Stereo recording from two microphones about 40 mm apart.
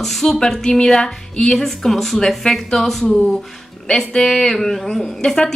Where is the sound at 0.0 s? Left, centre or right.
Centre.